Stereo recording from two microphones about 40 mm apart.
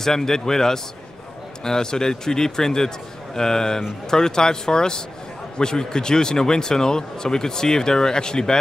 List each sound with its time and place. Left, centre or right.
0.0 s speech: centre